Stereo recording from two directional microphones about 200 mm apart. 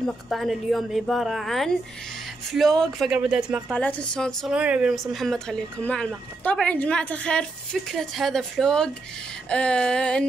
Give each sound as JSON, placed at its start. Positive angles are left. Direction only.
{"t": 0.0, "sound": "a woman's voice", "side_deg": 0}
{"t": 3.7, "sound": "a woman's voice", "side_deg": 5}